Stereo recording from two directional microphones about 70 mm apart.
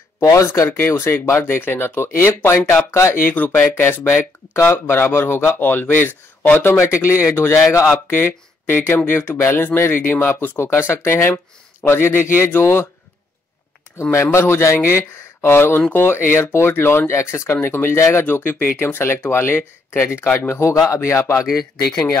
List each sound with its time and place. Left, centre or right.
0.2 s speech: left
3.2 s speech: left
14.1 s speech: left